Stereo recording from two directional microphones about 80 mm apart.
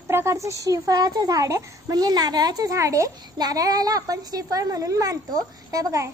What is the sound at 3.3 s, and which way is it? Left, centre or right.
A child's voice, right.